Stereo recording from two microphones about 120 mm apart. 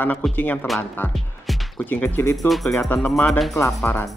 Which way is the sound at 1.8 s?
15° left (ahead or behind).